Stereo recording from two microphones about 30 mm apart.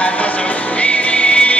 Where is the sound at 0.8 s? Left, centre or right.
Left.